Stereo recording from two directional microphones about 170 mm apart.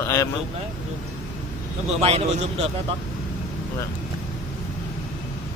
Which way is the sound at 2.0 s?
40° right (ahead or behind).